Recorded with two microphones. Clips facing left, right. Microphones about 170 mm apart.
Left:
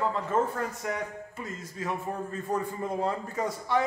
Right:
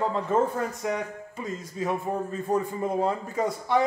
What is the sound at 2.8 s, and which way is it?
Speech, 15° right (ahead or behind).